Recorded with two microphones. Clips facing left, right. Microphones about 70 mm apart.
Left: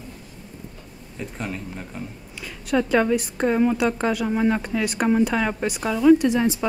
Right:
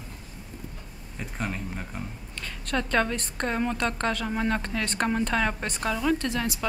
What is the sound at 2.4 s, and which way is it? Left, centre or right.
A woman's voice, centre.